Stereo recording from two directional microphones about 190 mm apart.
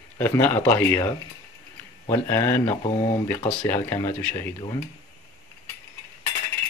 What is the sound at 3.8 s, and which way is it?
Speech, 10° left (ahead or behind).